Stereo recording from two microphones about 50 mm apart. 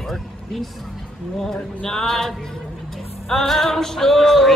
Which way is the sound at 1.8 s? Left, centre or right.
Centre.